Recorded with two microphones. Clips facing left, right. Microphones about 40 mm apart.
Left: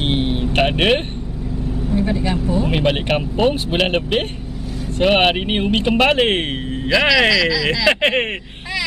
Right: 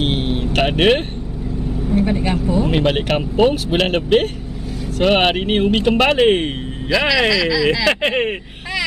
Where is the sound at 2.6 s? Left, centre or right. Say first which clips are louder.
Right 1 dB; centre.